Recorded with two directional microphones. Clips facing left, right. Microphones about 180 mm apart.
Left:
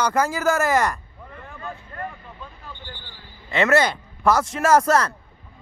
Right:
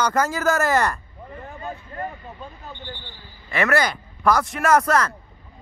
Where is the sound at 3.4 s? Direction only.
25° left (ahead or behind).